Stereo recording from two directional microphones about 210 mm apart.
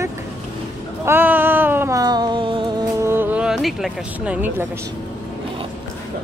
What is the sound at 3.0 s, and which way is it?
Speech, 10° right (ahead or behind).